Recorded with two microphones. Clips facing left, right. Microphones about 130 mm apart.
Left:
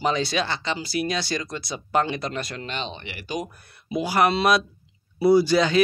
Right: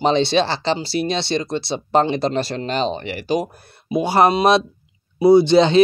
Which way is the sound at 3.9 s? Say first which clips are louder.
Right 6 dB; 25° right (ahead or behind).